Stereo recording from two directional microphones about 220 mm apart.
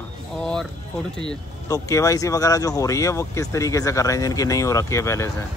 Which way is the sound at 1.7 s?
15° left (ahead or behind).